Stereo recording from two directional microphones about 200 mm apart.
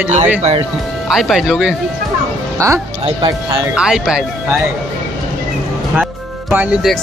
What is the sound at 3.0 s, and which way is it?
Speech, 25° right (ahead or behind).